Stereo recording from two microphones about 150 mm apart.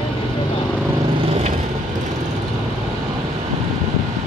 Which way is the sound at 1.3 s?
45° right (ahead or behind).